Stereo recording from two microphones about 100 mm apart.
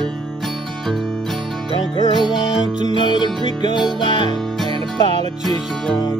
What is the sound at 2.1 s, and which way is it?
Music, centre (ahead or behind).